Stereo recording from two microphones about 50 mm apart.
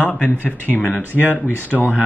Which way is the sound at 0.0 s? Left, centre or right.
Left.